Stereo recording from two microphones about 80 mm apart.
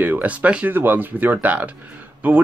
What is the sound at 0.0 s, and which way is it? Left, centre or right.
Speech, right.